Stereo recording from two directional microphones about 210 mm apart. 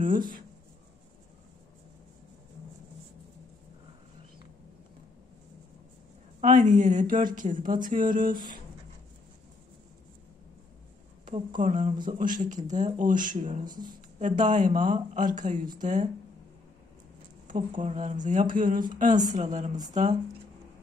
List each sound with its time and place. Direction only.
0.0 s speech: 40° right (ahead or behind)
6.4 s speech: 35° right (ahead or behind)
11.2 s speech: 40° right (ahead or behind)
17.7 s speech: 35° right (ahead or behind)